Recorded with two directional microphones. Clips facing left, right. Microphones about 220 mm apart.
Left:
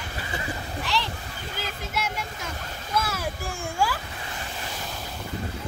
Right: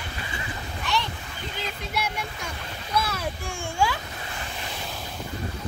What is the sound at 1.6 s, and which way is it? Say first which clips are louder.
Speech: right 1 dB; 5° left (ahead or behind).